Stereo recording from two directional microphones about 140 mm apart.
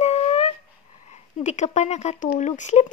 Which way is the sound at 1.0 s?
55° left (ahead or behind).